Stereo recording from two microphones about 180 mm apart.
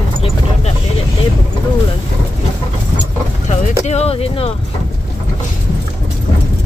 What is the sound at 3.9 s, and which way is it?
Speech, 35° left (ahead or behind).